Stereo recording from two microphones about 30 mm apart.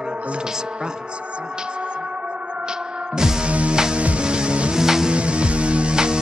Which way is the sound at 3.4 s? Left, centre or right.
Right.